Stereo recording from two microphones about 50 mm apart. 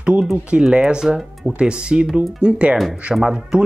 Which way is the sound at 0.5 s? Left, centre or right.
Centre.